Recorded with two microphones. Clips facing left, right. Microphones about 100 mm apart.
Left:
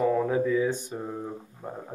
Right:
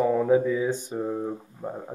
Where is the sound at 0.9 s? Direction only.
15° right (ahead or behind).